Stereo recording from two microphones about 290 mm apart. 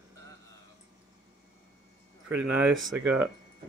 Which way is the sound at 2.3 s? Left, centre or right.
Centre.